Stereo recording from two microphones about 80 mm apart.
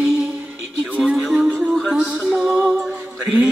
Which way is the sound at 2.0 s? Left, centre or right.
Centre.